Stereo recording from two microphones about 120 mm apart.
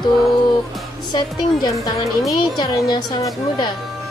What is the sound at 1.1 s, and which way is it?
A woman's voice, 35° left (ahead or behind).